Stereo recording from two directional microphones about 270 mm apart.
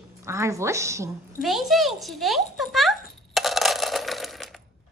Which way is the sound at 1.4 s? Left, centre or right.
Centre.